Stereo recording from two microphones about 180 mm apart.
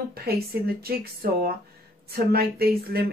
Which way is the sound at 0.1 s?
60° right (ahead or behind).